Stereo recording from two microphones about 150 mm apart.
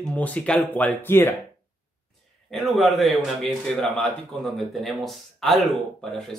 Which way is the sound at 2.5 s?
Centre (ahead or behind).